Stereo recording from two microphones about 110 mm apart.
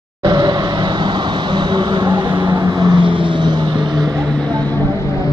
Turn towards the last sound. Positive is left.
turn(degrees=-40)  # may be behind; listen again after turning